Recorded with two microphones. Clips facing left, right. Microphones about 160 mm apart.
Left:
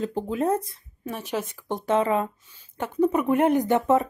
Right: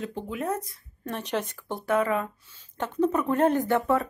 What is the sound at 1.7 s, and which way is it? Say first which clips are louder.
Speech: left 3 dB; 20° left (ahead or behind).